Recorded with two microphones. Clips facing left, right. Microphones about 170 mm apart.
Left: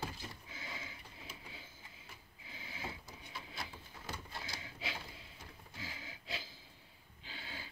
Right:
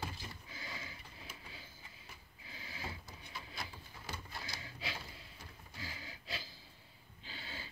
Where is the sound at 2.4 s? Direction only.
20° left (ahead or behind).